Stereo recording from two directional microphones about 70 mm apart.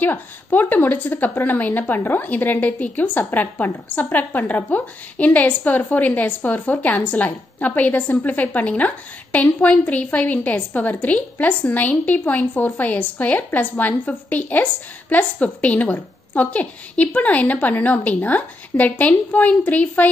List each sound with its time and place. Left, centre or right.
0.0 s a woman's voice: left